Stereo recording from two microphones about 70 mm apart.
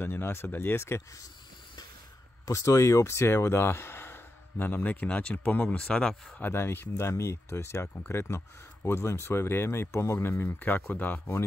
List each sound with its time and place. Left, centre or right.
0.0 s speech: left
2.4 s speech: left; by 6.4 s centre
6.4 s speech: left
6.9 s speech: left
10.6 s speech: left